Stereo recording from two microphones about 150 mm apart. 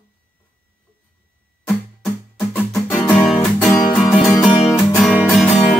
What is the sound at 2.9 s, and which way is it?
Music, 5° left (ahead or behind).